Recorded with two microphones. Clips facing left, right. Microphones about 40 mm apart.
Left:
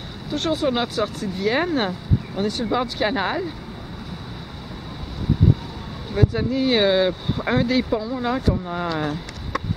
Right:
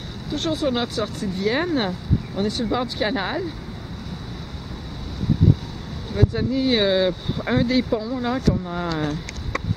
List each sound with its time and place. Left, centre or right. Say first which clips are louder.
0.3 s speech: left 1 dB; centre
6.1 s speech: left 1 dB; centre
8.8 s speech: left 1 dB; centre